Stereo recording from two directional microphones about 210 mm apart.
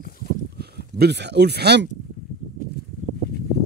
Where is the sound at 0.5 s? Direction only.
50° right (ahead or behind).